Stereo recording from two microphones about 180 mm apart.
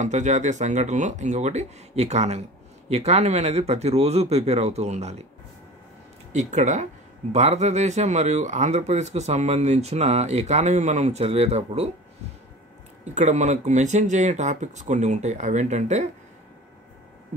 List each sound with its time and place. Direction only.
0.0 s speech: 40° right (ahead or behind)
6.3 s speech: 40° right (ahead or behind)
13.0 s speech: 40° right (ahead or behind)